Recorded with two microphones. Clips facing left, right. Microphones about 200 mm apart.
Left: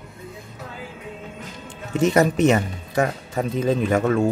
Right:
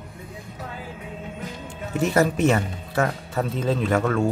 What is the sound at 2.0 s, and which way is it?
Speech, 20° left (ahead or behind).